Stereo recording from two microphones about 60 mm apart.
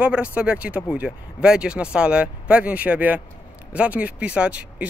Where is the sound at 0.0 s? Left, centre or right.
Right.